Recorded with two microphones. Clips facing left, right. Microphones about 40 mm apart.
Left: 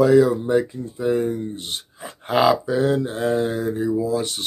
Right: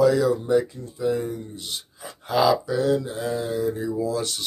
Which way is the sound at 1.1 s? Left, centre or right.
Left.